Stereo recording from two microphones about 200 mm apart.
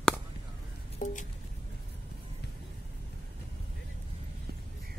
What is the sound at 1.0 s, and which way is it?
Music, 40° left (ahead or behind).